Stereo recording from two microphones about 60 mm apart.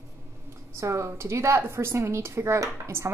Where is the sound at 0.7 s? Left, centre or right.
Right.